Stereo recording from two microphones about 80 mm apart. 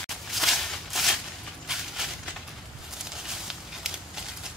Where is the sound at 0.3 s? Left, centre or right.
Centre.